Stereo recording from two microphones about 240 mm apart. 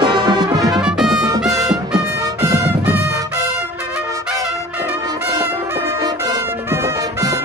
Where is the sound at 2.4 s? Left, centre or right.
Centre.